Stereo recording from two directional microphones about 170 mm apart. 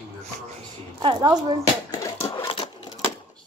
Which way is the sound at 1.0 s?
25° right (ahead or behind).